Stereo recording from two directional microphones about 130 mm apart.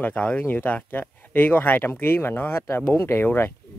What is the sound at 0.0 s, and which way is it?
Speech, 10° left (ahead or behind).